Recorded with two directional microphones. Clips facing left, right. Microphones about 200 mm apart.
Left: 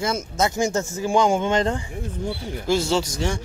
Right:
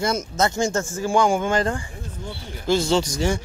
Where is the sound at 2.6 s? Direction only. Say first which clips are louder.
Right 2 dB; 5° left (ahead or behind).